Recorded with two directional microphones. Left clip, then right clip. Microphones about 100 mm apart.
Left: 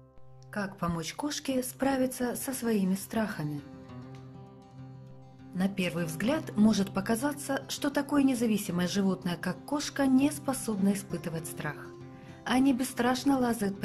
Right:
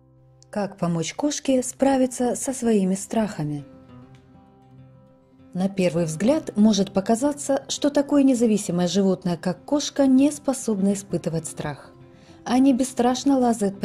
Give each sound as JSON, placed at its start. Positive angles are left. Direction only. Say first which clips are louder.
{"t": 0.5, "sound": "a woman's voice", "louder": "right 8 dB", "side_deg": -45}
{"t": 5.6, "sound": "a woman's voice", "louder": "right 10 dB", "side_deg": -45}
{"t": 6.5, "sound": "a woman's voice", "louder": "right 8 dB", "side_deg": -30}